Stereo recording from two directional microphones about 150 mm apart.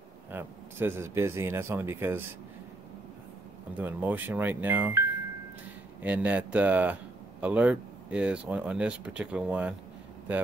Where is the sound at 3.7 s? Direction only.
10° right (ahead or behind).